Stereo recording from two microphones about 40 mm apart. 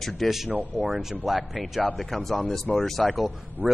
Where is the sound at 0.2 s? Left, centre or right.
Centre.